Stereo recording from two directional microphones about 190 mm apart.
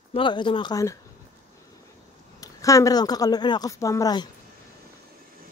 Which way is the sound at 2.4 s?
15° left (ahead or behind).